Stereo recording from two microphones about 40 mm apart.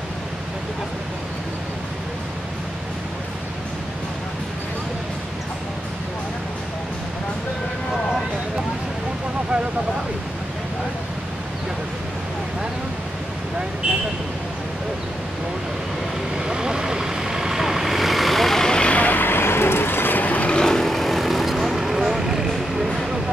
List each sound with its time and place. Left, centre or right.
16.3 s vehicle: centre
18.7 s vehicle: left
18.9 s a sound: left
19.2 s vehicle: left
20.2 s vehicle: left
20.5 s vehicle: centre